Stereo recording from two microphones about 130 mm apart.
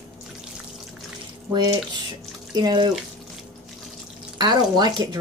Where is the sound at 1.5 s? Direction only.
30° right (ahead or behind).